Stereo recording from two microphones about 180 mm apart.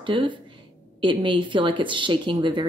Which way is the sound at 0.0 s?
25° right (ahead or behind).